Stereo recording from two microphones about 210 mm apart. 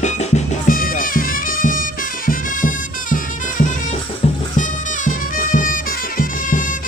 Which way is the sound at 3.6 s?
40° left (ahead or behind).